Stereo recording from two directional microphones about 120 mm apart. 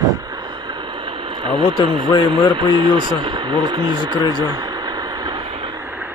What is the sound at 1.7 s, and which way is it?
A man's voice, 45° right (ahead or behind).